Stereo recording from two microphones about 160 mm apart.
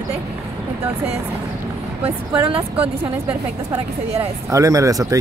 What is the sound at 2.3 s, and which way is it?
Speech, 10° right (ahead or behind).